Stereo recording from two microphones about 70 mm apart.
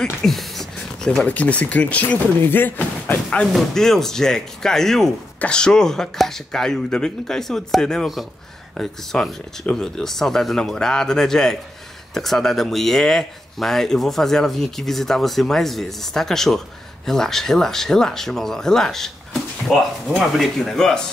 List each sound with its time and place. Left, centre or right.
0.0 s a sound: centre
1.2 s speech: centre
3.5 s speech: centre